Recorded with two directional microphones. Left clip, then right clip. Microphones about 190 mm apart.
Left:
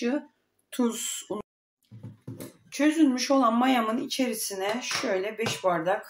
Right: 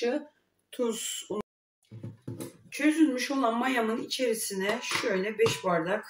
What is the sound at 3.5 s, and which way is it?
Speech, 55° left (ahead or behind).